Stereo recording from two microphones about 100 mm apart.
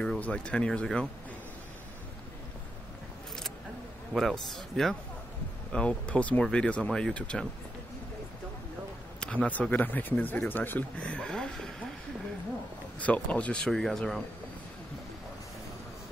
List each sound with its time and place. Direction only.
0.0 s speech: 10° left (ahead or behind)
4.1 s a man's voice: centre (ahead or behind)
9.2 s speech: 15° left (ahead or behind)
13.0 s speech: 15° left (ahead or behind)